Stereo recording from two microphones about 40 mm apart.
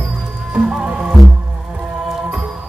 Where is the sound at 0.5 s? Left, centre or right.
Centre.